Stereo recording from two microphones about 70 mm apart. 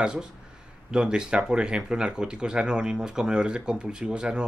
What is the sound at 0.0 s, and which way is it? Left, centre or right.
Speech, centre.